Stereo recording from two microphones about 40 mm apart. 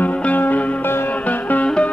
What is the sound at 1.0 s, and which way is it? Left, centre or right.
Music, left.